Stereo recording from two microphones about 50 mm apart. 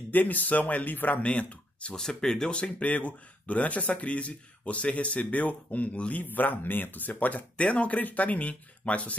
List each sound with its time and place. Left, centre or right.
0.1 s speech: left
2.0 s speech: centre; by 9.1 s left